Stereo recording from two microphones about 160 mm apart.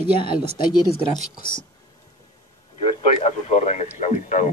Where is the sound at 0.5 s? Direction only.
25° left (ahead or behind).